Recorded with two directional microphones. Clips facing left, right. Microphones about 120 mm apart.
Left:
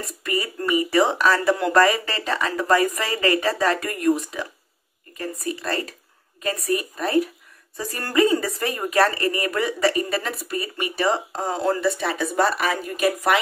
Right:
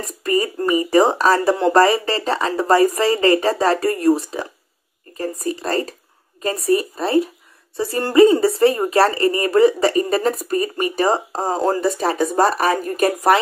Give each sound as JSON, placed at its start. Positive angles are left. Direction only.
{"t": 0.0, "sound": "speech", "side_deg": -40}